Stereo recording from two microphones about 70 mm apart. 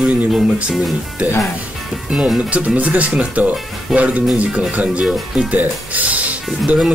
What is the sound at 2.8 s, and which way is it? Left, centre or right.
Speech, right.